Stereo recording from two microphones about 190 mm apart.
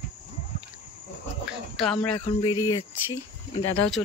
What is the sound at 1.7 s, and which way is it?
Speech, 5° left (ahead or behind).